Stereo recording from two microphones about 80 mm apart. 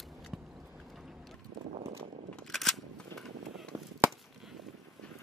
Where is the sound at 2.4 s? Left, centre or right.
Centre.